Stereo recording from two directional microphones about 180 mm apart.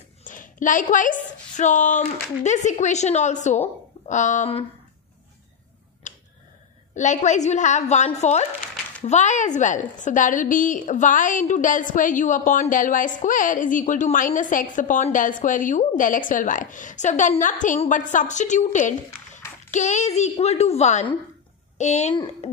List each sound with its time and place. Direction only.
0.2 s a woman's voice: 45° left (ahead or behind)
6.0 s tick-tock: 45° left (ahead or behind)
7.0 s a woman's voice: 40° left (ahead or behind)